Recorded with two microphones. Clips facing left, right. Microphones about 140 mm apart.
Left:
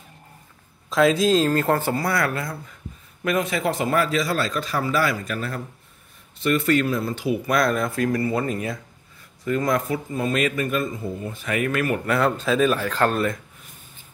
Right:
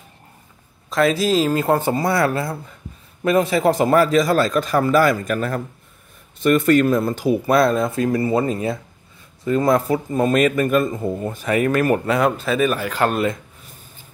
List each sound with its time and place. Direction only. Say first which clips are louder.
0.8 s speech: even; centre (ahead or behind); by 7.5 s 40° right (ahead or behind)
7.5 s speech: right 5 dB; 25° right (ahead or behind)
12.1 s speech: right 2 dB; 10° right (ahead or behind)